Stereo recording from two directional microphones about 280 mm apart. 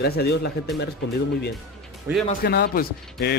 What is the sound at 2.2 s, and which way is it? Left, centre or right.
Speech, left.